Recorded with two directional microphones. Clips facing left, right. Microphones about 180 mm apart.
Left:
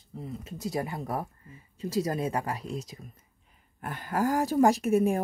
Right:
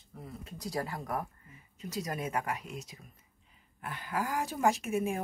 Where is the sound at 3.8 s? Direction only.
45° left (ahead or behind).